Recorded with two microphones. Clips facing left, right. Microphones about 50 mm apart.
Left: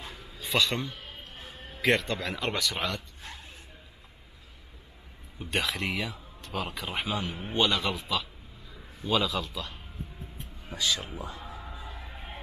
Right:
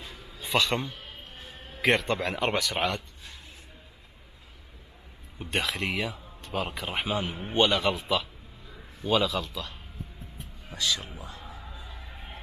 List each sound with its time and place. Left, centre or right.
0.4 s speech: centre
2.7 s a man's voice: centre
5.4 s speech: centre
11.5 s music: centre